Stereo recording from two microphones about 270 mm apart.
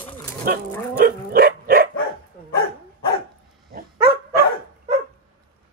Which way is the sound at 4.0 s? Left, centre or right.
Left.